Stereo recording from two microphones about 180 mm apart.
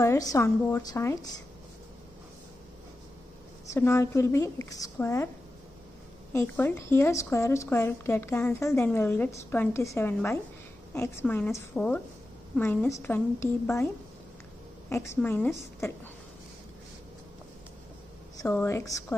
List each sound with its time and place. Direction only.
0.0 s a woman's voice: 20° left (ahead or behind)
3.7 s a woman's voice: 15° left (ahead or behind)
6.3 s a woman's voice: 10° left (ahead or behind)
14.9 s a woman's voice: 15° left (ahead or behind)
18.4 s a woman's voice: 10° left (ahead or behind)